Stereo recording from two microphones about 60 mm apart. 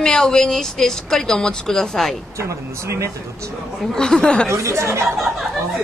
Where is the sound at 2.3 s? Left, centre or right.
Right.